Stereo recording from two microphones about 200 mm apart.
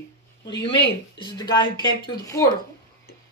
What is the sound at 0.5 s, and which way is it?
Speech, 25° left (ahead or behind).